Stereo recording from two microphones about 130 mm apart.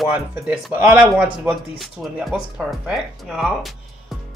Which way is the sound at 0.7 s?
10° right (ahead or behind).